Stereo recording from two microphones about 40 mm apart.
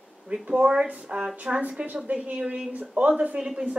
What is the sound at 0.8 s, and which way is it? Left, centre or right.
Speech, right.